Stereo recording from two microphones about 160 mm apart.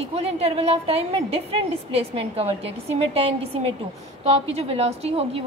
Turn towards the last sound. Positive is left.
turn(degrees=-35)  # may be behind; listen again after turning